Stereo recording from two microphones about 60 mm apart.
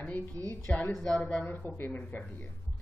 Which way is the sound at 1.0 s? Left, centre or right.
Centre.